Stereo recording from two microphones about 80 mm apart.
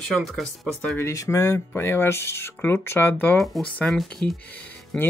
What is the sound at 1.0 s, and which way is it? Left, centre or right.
A woman's voice, left.